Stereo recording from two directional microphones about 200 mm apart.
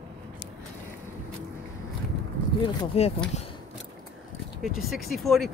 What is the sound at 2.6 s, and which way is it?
Speech, 25° left (ahead or behind).